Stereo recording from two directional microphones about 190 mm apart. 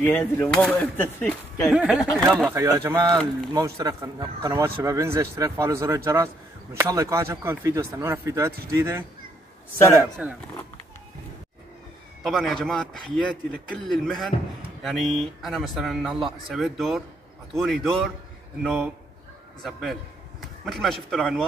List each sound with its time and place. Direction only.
0.0 s speech: 10° left (ahead or behind)
1.7 s speech: 5° right (ahead or behind)
2.5 s a man's voice: 15° right (ahead or behind)
10.2 s a man's voice: 5° right (ahead or behind)
12.2 s a man's voice: centre (ahead or behind)